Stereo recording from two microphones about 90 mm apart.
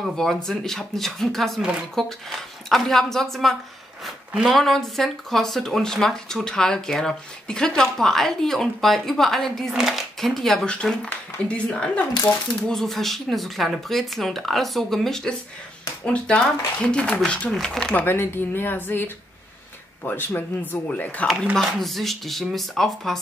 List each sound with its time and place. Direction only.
0.0 s a woman's voice: 5° left (ahead or behind)
18.0 s speech: 25° left (ahead or behind)
21.5 s speech: centre (ahead or behind)